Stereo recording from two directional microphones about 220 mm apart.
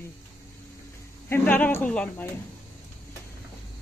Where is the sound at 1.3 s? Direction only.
10° left (ahead or behind).